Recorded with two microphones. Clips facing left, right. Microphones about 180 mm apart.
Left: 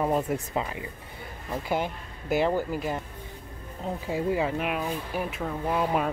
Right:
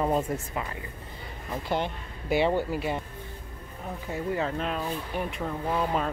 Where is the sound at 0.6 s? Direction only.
20° left (ahead or behind).